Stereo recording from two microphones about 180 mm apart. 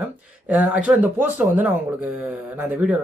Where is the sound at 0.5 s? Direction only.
10° right (ahead or behind).